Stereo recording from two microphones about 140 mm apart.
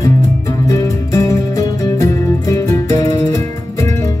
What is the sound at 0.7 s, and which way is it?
Music, 25° left (ahead or behind).